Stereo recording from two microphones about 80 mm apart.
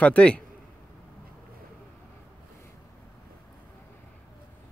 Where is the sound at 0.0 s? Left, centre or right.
Centre.